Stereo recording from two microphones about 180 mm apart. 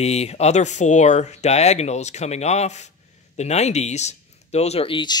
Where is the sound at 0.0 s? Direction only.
35° left (ahead or behind).